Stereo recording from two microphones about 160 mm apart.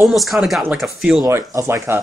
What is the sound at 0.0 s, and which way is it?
Speech, centre (ahead or behind).